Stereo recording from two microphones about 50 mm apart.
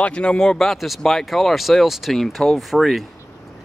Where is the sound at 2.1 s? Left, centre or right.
Centre.